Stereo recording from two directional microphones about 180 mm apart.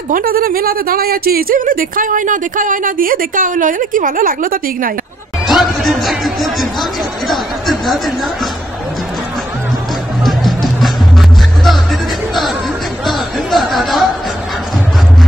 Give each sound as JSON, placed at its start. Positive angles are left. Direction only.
{"t": 0.1, "sound": "speech", "side_deg": -55}
{"t": 5.5, "sound": "music", "side_deg": 0}
{"t": 10.2, "sound": "music", "side_deg": 0}
{"t": 13.0, "sound": "chatter", "side_deg": 0}